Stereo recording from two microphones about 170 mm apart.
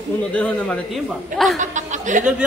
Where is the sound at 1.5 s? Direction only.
45° right (ahead or behind).